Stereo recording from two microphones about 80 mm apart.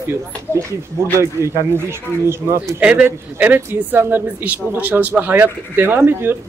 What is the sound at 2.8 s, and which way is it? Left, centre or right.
Speech, centre.